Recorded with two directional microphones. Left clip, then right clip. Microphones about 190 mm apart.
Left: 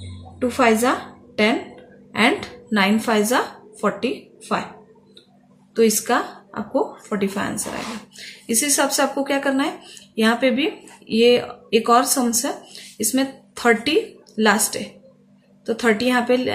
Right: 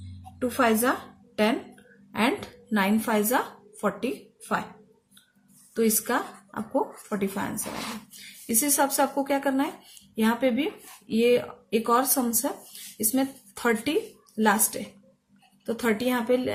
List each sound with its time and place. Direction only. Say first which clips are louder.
0.4 s a woman's voice: left 6 dB; 25° right (ahead or behind)
5.8 s a woman's voice: left 8 dB; 20° right (ahead or behind)